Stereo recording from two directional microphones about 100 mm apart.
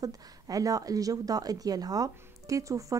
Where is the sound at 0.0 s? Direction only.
35° right (ahead or behind).